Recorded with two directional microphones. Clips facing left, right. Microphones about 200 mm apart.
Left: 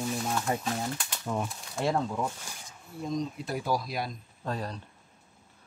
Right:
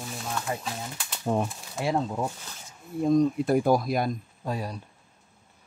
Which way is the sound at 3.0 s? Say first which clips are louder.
Right 11 dB; 55° right (ahead or behind).